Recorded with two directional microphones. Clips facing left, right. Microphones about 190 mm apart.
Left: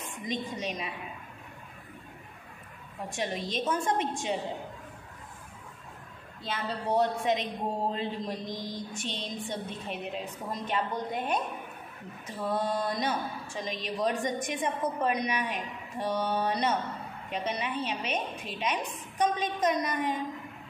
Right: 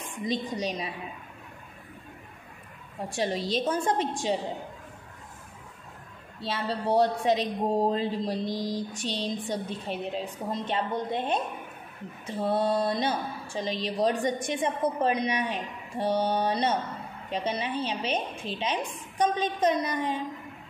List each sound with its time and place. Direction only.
0.2 s a man's voice: 35° right (ahead or behind)
3.1 s a man's voice: 35° right (ahead or behind)
6.4 s a man's voice: 30° right (ahead or behind)